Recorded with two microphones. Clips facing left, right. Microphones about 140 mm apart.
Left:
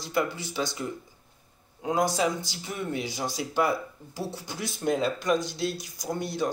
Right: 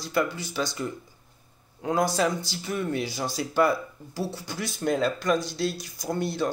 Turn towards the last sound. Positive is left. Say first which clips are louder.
# right 2 dB
turn(degrees=15)  # may be behind; listen again after turning